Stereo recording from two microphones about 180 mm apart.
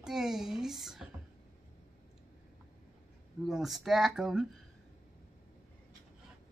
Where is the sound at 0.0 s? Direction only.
Centre (ahead or behind).